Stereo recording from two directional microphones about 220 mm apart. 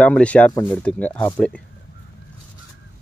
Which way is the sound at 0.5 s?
15° left (ahead or behind).